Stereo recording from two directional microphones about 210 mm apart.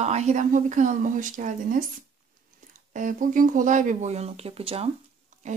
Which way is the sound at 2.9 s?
40° right (ahead or behind).